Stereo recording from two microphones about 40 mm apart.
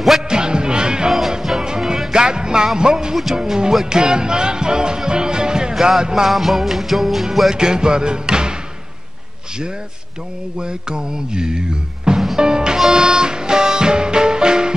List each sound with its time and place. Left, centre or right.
0.3 s music: centre
1.4 s music: centre
2.1 s music: centre
6.3 s music: centre
7.5 s music: centre
10.6 s music: centre